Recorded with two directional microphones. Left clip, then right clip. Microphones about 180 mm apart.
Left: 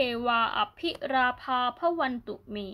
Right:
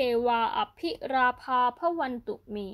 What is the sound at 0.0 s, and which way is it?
A woman's voice, 40° right (ahead or behind).